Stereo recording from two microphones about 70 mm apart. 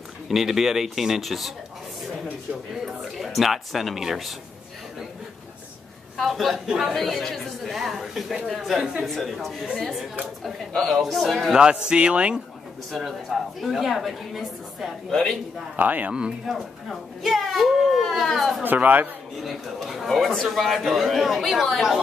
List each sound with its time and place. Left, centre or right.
0.3 s a man's voice: centre
2.7 s a man's voice: centre
6.1 s a man's voice: centre
8.7 s speech: centre
9.0 s a man's voice: centre
11.5 s speech: centre
13.6 s a man's voice: centre
15.7 s a man's voice: right
16.9 s a man's voice: centre
18.6 s a man's voice: right
19.4 s a man's voice: centre